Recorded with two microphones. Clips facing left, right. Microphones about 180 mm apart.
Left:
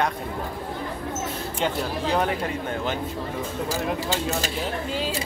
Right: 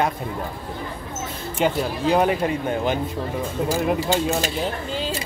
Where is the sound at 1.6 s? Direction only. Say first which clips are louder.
Right 5 dB; 15° right (ahead or behind).